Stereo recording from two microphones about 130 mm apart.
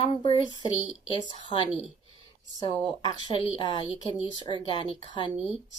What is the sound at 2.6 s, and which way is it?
Speech, 40° left (ahead or behind).